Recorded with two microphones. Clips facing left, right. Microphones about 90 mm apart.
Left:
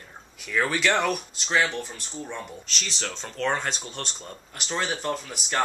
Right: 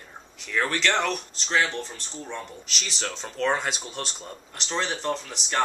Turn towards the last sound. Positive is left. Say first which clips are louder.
# right 1 dB
turn(degrees=5)  # may be behind; listen again after turning